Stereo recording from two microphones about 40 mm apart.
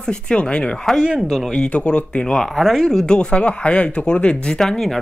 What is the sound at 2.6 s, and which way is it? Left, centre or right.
Speech, centre.